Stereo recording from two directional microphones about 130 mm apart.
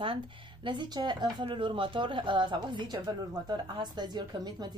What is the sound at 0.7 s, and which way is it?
Speech, 35° right (ahead or behind).